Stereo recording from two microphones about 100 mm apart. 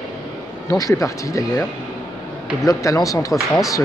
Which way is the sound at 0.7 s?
35° left (ahead or behind).